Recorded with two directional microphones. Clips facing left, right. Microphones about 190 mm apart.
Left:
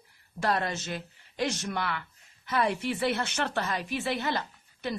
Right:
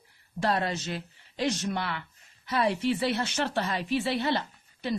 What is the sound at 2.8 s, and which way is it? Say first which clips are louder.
Speech: right 2 dB; 50° left (ahead or behind).